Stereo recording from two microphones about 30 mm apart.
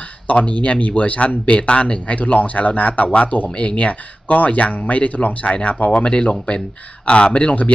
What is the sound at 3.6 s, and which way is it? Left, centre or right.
Speech, left.